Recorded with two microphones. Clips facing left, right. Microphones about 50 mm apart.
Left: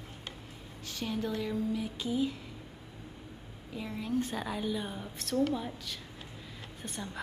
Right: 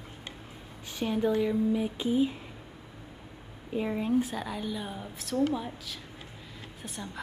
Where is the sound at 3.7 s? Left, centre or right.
Right.